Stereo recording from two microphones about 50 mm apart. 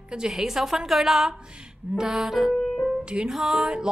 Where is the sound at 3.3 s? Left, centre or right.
Centre.